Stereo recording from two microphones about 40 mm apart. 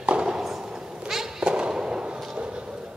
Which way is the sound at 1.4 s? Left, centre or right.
Right.